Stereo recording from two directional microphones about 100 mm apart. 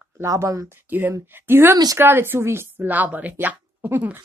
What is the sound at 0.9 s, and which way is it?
Speech, 20° right (ahead or behind).